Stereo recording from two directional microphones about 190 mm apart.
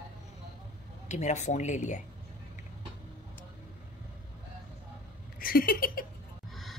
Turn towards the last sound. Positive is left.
turn(degrees=0)  # may be behind; listen again after turning